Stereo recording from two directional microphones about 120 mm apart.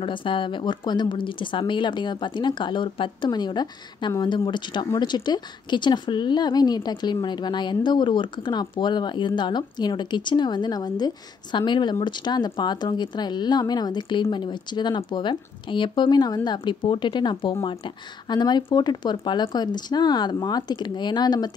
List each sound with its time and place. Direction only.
0.0 s a woman's voice: 45° left (ahead or behind)